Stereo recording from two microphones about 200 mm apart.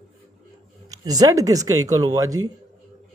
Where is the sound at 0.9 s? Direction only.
20° right (ahead or behind).